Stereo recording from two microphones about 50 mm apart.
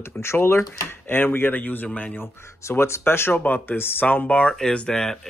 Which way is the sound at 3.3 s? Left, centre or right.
Left.